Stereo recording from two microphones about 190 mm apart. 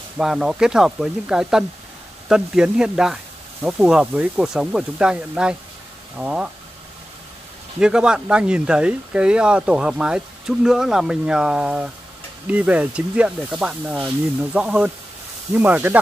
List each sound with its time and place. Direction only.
0.2 s speech: 5° right (ahead or behind)
7.8 s speech: 5° right (ahead or behind)